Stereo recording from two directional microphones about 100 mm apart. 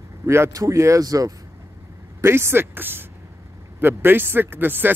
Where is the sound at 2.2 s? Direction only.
25° right (ahead or behind).